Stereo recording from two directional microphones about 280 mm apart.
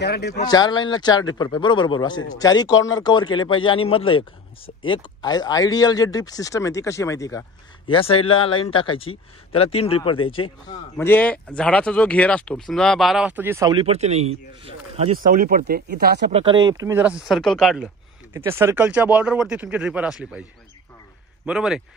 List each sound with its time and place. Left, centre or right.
0.0 s speech: left
0.5 s speech: centre
11.0 s speech: centre; by 16.3 s right
16.3 s speech: centre
21.5 s speech: centre